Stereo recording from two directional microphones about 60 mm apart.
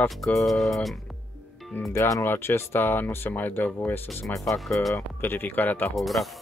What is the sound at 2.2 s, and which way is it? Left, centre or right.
Speech, left.